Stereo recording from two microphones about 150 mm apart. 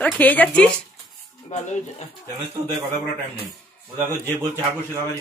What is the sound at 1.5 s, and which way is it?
Speech, 50° left (ahead or behind).